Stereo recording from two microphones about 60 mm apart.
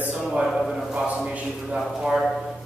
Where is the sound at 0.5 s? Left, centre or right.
Centre.